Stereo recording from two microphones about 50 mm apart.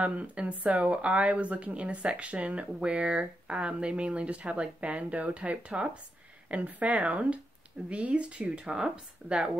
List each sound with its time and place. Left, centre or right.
0.0 s speech: right